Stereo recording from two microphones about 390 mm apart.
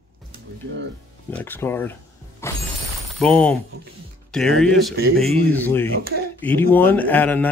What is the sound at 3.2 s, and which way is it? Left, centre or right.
Speech, centre.